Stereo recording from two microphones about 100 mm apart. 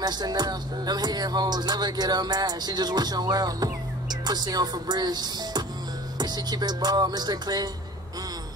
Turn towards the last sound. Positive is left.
turn(degrees=-40)  # may be behind; listen again after turning